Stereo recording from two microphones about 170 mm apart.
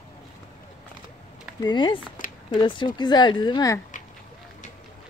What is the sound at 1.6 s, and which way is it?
Speech, 25° left (ahead or behind).